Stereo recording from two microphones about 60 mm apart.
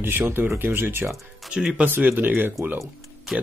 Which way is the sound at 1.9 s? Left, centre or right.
Right.